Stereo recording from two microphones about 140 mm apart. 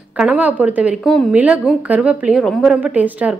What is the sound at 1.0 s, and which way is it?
Speech, centre (ahead or behind).